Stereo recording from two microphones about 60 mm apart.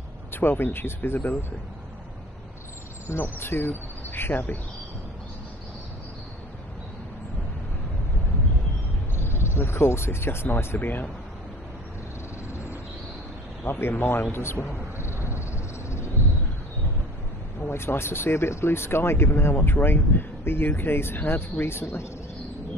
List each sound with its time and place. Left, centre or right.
0.3 s speech: left
3.1 s speech: left
9.1 s speech: left
13.7 s speech: left
15.3 s a sound: left
17.6 s speech: left